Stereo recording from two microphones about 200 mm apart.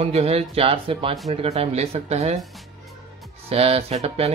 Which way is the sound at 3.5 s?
30° right (ahead or behind).